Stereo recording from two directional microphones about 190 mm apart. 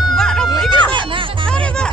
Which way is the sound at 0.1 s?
5° left (ahead or behind).